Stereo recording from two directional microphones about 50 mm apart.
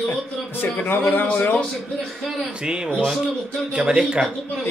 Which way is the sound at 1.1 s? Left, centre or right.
Left.